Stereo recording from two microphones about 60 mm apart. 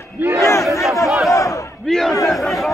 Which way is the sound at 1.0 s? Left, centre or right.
Centre.